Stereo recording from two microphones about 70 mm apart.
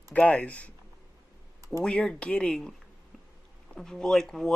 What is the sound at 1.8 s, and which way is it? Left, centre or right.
Speech, centre.